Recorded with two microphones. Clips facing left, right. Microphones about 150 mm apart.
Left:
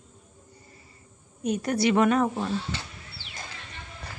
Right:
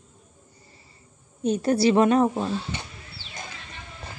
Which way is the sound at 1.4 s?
30° right (ahead or behind).